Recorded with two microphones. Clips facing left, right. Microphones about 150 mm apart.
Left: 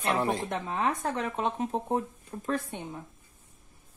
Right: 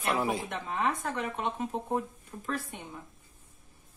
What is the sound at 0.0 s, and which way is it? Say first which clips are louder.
Speech: left 2 dB; 5° right (ahead or behind).